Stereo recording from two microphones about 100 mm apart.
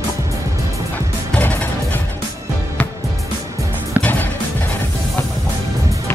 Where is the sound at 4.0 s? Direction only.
15° left (ahead or behind).